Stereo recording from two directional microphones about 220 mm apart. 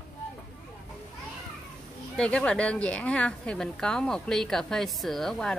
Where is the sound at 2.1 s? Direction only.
5° left (ahead or behind).